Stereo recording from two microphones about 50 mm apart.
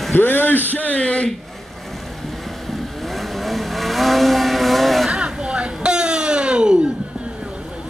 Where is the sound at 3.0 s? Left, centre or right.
Centre.